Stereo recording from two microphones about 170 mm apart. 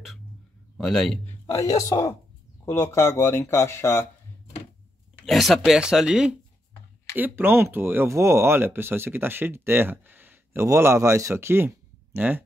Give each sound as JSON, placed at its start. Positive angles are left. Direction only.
{"t": 0.7, "sound": "speech", "side_deg": 0}
{"t": 1.5, "sound": "a man's voice", "side_deg": 20}
{"t": 5.2, "sound": "speech", "side_deg": 0}